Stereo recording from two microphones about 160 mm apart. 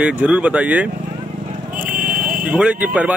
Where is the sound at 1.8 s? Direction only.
60° right (ahead or behind).